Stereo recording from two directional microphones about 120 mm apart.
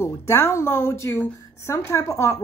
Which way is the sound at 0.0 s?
20° left (ahead or behind).